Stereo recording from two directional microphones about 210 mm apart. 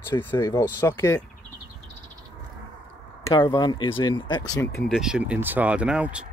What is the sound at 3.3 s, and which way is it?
Speech, 20° left (ahead or behind).